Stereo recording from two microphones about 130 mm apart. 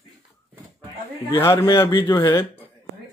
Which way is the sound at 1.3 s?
20° left (ahead or behind).